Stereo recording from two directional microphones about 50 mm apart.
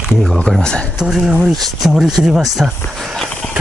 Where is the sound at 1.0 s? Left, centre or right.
Centre.